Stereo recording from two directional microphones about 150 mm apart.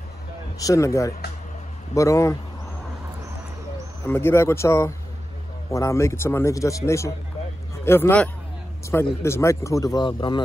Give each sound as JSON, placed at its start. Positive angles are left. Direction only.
{"t": 0.6, "sound": "a man's voice", "side_deg": 20}
{"t": 4.0, "sound": "a man's voice", "side_deg": 15}